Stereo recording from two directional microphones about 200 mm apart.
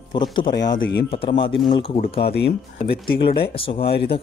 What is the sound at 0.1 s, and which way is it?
Speech, 25° left (ahead or behind).